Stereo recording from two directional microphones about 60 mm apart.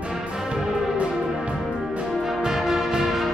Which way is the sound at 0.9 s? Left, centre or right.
Centre.